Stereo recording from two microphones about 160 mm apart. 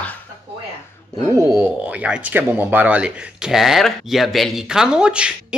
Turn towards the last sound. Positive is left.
turn(degrees=-5)  # may be behind; listen again after turning